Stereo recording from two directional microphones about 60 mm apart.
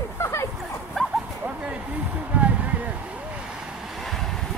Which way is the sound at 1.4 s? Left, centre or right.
Centre.